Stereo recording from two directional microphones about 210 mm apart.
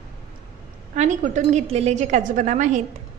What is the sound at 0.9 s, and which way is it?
A woman's voice, 35° right (ahead or behind).